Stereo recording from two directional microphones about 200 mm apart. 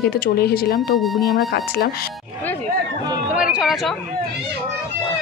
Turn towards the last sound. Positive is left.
turn(degrees=0)  # may be behind; listen again after turning